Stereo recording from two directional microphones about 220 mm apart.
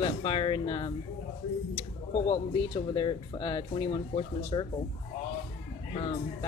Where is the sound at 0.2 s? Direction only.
20° left (ahead or behind).